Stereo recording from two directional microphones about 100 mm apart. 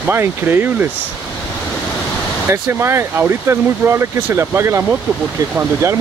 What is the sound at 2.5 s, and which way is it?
Speech, 25° right (ahead or behind).